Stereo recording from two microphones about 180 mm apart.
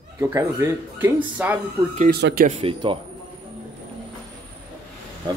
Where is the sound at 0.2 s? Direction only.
15° right (ahead or behind).